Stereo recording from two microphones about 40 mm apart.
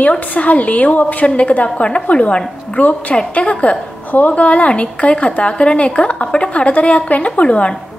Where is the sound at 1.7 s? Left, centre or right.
Left.